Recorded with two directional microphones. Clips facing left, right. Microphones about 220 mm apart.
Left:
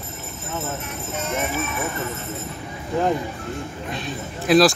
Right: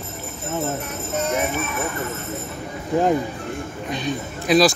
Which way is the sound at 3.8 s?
Centre (ahead or behind).